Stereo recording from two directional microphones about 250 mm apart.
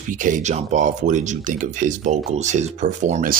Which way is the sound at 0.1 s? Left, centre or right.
Right.